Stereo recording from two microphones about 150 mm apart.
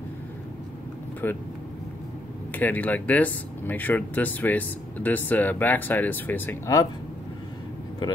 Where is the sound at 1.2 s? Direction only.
15° left (ahead or behind).